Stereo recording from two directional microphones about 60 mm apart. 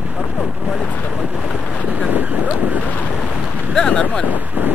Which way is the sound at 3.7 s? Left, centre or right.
Centre.